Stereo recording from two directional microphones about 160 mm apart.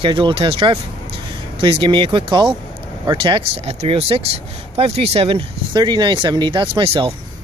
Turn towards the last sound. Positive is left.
turn(degrees=-35)  # may be behind; listen again after turning